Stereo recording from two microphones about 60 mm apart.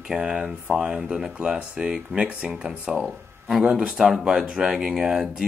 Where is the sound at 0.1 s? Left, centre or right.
Centre.